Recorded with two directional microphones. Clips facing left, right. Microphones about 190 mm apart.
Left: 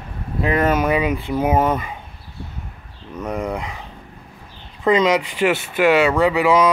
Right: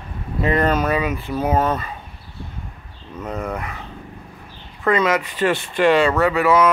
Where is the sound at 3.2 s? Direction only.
10° left (ahead or behind).